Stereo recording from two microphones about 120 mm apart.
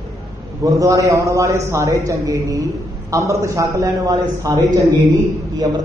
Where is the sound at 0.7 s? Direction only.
25° right (ahead or behind).